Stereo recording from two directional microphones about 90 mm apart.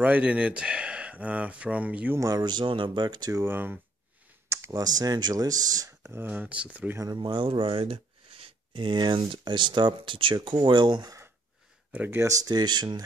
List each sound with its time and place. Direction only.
0.0 s speech: 15° right (ahead or behind)
2.1 s speech: 45° right (ahead or behind)
3.3 s speech: 25° right (ahead or behind)
4.5 s clicking: 35° right (ahead or behind)
4.8 s speech: 45° right (ahead or behind)
6.0 s speech: 25° right (ahead or behind)
7.0 s speech: 55° right (ahead or behind)
11.9 s speech: 20° right (ahead or behind)
12.4 s speech: 50° right (ahead or behind)